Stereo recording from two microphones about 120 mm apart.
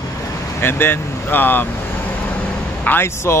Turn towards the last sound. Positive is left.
turn(degrees=20)  # may be behind; listen again after turning